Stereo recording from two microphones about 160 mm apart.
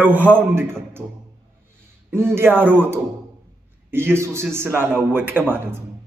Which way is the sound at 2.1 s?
15° right (ahead or behind).